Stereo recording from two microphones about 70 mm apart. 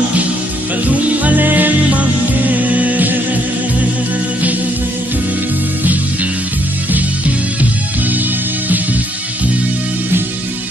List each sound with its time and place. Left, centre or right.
0.8 s music: right
6.9 s music: right